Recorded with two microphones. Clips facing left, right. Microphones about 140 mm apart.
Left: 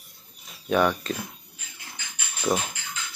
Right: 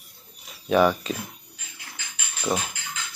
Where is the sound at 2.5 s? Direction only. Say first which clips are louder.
Left 1 dB; 5° left (ahead or behind).